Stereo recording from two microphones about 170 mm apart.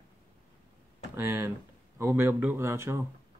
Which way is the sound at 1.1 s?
15° right (ahead or behind).